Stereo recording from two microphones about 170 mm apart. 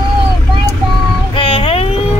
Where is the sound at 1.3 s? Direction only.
30° left (ahead or behind).